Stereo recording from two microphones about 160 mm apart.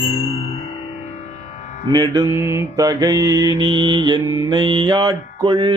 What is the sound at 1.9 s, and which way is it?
Mantra, 25° right (ahead or behind).